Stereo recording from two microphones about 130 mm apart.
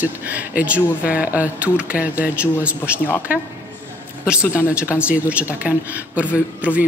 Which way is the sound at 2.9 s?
15° left (ahead or behind).